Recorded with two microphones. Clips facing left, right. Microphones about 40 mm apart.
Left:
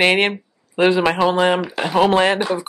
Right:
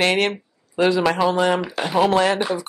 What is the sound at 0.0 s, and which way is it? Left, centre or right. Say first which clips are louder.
Speech: left 3 dB; left.